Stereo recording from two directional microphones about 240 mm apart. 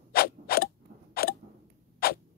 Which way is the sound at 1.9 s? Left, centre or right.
Left.